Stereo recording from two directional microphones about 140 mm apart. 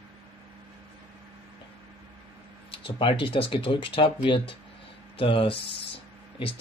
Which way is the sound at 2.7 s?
40° left (ahead or behind).